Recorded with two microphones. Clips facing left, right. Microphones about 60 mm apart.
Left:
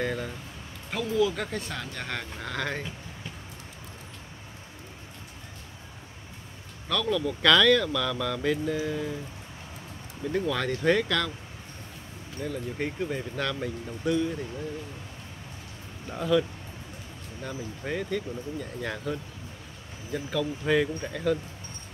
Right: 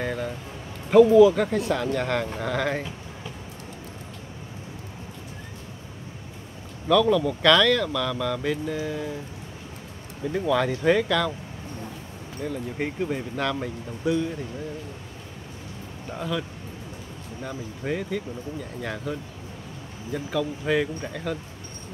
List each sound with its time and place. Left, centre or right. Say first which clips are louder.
0.0 s a sound: right 2 dB; centre
1.1 s speech: right 11 dB; centre
6.9 s speech: right 8 dB; centre
10.3 s speech: right 4 dB; centre
12.4 s speech: right 2 dB; centre
16.1 s speech: left 5 dB; centre